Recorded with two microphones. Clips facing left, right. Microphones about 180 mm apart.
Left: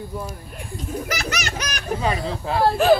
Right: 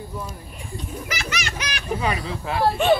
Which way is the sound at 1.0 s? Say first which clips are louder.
Left 3 dB; 40° left (ahead or behind).